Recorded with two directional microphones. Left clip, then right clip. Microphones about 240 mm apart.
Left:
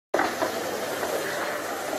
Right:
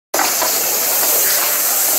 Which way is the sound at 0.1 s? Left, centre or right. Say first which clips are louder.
Right 7 dB; centre.